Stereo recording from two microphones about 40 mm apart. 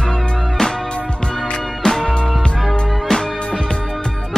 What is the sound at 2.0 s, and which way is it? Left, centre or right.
Music, centre.